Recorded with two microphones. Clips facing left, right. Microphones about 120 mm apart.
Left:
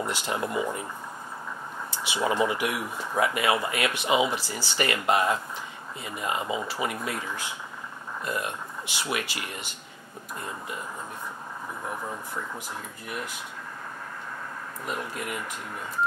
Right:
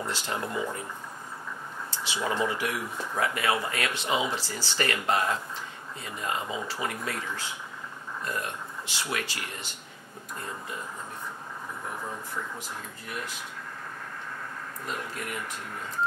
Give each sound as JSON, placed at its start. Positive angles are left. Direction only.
{"t": 0.0, "sound": "speech", "side_deg": 15}
{"t": 1.9, "sound": "speech", "side_deg": 15}